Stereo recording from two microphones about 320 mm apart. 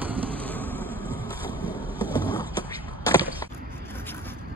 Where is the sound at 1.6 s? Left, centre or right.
Centre.